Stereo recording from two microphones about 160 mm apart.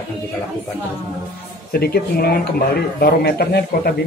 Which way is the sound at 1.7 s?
75° left (ahead or behind).